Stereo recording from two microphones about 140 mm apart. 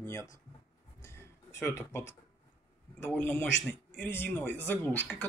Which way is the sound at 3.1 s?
15° left (ahead or behind).